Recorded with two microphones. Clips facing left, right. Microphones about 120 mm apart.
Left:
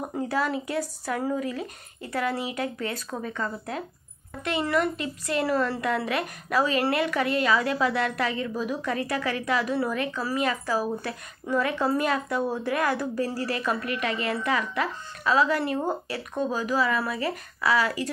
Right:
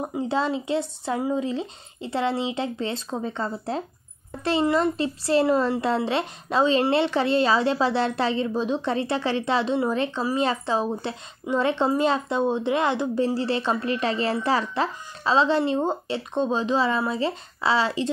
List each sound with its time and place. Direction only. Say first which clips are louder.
0.0 s a woman's voice: right 2 dB; 20° right (ahead or behind)